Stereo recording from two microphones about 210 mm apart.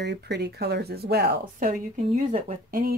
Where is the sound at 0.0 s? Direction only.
55° right (ahead or behind).